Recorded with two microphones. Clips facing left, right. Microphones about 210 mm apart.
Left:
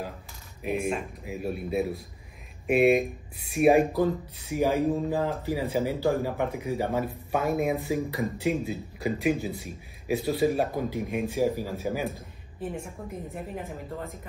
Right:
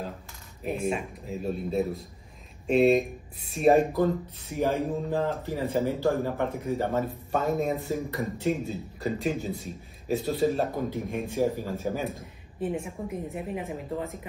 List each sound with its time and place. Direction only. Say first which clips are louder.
1.2 s a woman's voice: right 1 dB; 10° left (ahead or behind)